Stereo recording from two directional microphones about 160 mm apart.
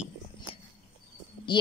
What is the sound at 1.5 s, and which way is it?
Speech, 30° left (ahead or behind).